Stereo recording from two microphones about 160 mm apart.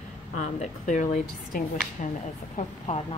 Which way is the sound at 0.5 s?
45° left (ahead or behind).